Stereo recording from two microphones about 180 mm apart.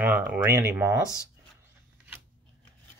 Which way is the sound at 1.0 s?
15° left (ahead or behind).